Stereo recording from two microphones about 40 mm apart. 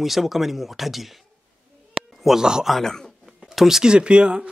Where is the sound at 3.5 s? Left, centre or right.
Centre.